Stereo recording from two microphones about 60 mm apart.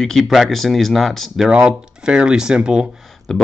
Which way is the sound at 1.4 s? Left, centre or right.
Centre.